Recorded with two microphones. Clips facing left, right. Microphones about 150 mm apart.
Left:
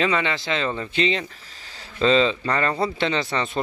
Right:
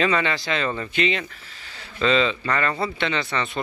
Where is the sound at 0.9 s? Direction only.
30° left (ahead or behind).